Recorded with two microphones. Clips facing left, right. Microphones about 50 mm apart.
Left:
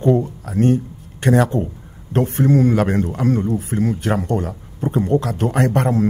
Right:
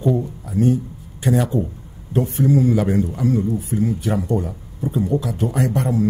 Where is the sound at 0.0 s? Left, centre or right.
Left.